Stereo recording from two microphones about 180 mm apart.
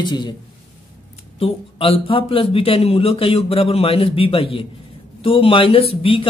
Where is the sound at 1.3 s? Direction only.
30° left (ahead or behind).